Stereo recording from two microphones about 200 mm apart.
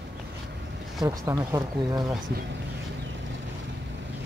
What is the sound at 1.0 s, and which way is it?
Speech, 15° right (ahead or behind).